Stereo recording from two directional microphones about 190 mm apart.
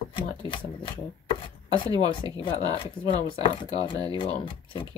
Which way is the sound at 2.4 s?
30° left (ahead or behind).